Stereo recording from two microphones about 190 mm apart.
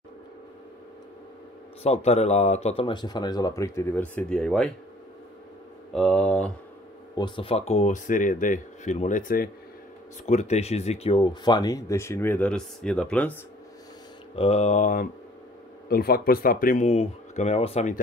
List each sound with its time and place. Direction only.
1.8 s speech: 35° left (ahead or behind); by 4.6 s 5° left (ahead or behind)
5.9 s speech: 5° left (ahead or behind)
7.2 s speech: 25° left (ahead or behind); by 13.4 s 5° left (ahead or behind)
14.3 s speech: 30° left (ahead or behind)